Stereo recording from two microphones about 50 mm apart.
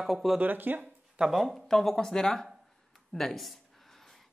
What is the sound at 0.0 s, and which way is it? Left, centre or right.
Speech, centre.